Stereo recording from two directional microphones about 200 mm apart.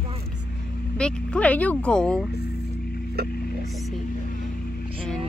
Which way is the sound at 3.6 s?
Centre (ahead or behind).